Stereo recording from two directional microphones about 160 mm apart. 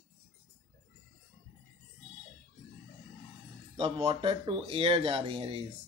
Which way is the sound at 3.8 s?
35° right (ahead or behind).